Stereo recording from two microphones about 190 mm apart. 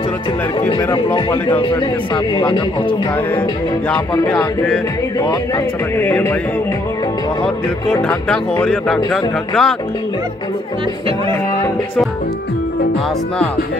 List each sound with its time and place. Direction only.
0.6 s speech: 30° left (ahead or behind)
5.9 s music: 10° left (ahead or behind)
8.3 s speech: 5° left (ahead or behind)